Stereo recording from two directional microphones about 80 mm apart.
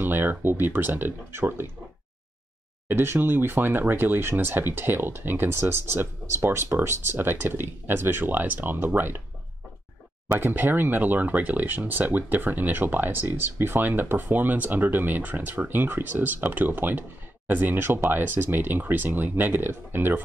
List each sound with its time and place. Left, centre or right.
0.0 s speech: right
2.9 s speech: right
10.2 s speech: right